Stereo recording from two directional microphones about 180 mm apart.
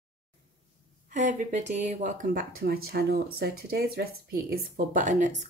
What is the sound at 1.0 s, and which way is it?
Speech, 45° right (ahead or behind).